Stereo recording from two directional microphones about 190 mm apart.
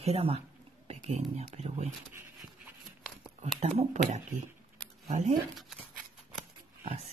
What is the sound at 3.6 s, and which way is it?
Speech, 35° right (ahead or behind).